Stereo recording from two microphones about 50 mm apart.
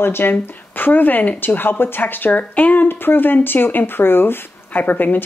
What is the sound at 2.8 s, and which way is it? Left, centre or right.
Speech, left.